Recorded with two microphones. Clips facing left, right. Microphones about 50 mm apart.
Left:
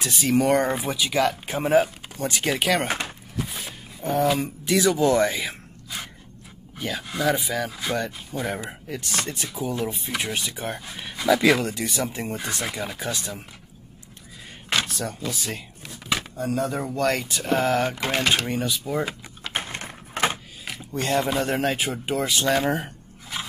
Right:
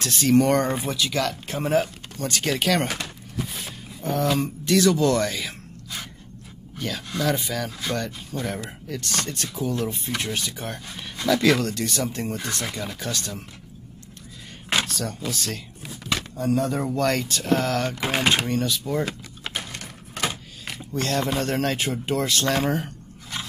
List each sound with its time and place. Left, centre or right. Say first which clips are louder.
0.0 s speech: right 2 dB; centre
3.3 s a sound: even; centre
4.0 s speech: left 1 dB; centre
14.9 s speech: even; centre
18.0 s speech: right 1 dB; centre
18.5 s speech: right 1 dB; centre
19.5 s wood: left 6 dB; left
20.6 s speech: even; centre
23.3 s scrape: left 1 dB; centre